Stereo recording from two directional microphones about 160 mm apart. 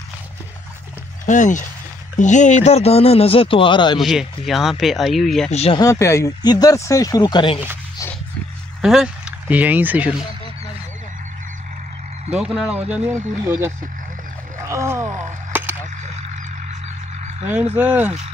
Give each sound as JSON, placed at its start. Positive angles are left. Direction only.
{"t": 1.2, "sound": "a man's voice", "side_deg": 50}
{"t": 4.0, "sound": "speech", "side_deg": 0}
{"t": 5.5, "sound": "a man's voice", "side_deg": 40}
{"t": 5.8, "sound": "speech", "side_deg": 20}
{"t": 8.8, "sound": "speech", "side_deg": -5}
{"t": 12.3, "sound": "speech", "side_deg": -5}
{"t": 15.5, "sound": "a sound", "side_deg": -10}
{"t": 17.7, "sound": "speech", "side_deg": -10}